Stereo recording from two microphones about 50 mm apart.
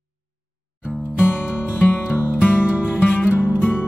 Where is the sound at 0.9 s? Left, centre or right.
Centre.